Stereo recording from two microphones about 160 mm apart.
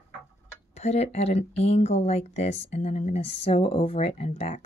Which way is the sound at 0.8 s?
45° left (ahead or behind).